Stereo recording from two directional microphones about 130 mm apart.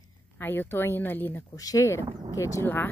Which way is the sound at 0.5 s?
15° left (ahead or behind).